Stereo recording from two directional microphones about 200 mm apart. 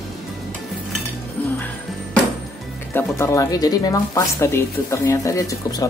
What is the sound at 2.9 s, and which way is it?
Speech, 10° left (ahead or behind).